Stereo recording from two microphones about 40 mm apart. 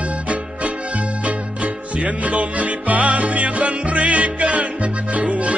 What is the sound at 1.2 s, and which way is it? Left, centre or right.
Music, right.